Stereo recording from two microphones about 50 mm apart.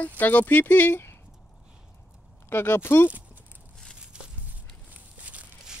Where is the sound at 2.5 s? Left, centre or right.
Left.